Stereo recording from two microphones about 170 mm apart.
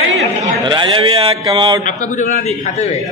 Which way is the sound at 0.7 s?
30° right (ahead or behind).